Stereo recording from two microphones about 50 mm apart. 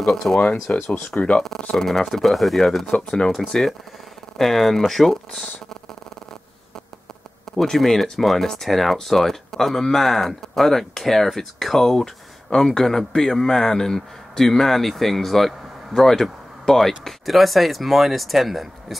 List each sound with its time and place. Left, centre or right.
0.0 s speech: centre
0.7 s speech: left
1.1 s speech: left
1.8 s speech: centre
7.5 s speech: centre